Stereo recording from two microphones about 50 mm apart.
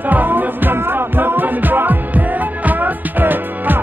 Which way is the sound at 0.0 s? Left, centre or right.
Right.